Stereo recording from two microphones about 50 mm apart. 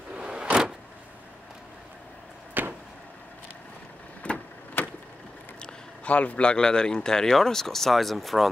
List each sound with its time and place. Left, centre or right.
0.1 s vehicle: centre
2.6 s a sound: right
4.2 s vehicle: left
5.6 s a man's voice: left; by 8.5 s centre